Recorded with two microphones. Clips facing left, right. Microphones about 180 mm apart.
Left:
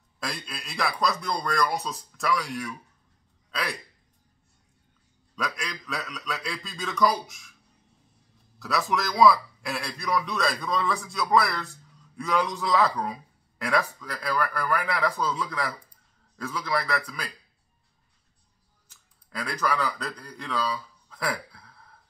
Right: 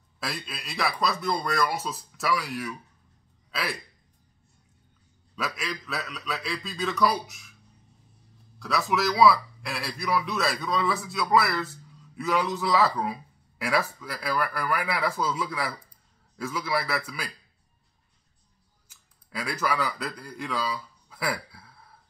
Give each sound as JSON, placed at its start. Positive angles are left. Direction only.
{"t": 0.2, "sound": "a man's voice", "side_deg": 0}
{"t": 5.3, "sound": "a man's voice", "side_deg": -5}
{"t": 8.5, "sound": "a man's voice", "side_deg": 0}
{"t": 18.9, "sound": "speech", "side_deg": -10}